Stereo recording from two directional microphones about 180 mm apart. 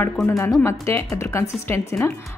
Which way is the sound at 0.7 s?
15° left (ahead or behind).